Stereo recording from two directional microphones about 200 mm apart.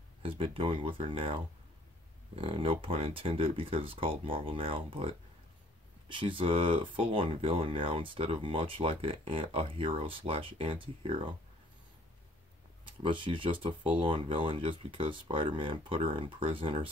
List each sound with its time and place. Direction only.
0.2 s speech: 25° right (ahead or behind)
12.8 s speech: 25° right (ahead or behind)